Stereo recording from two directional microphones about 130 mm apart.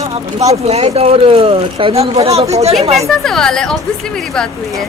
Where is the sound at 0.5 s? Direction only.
55° right (ahead or behind).